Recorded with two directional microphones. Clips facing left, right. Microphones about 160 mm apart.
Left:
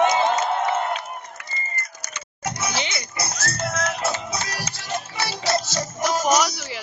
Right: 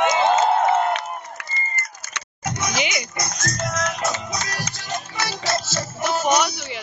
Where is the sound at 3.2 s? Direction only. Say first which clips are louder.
Left 3 dB; 30° left (ahead or behind).